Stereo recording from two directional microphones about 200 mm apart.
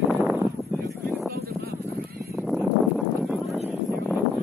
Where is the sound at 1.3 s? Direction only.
50° right (ahead or behind).